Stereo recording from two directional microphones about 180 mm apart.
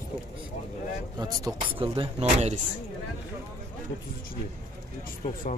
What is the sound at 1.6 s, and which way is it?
Speech, 30° right (ahead or behind).